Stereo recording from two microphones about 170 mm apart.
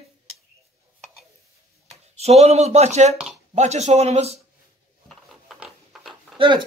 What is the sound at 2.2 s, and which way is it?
Speech, 40° right (ahead or behind).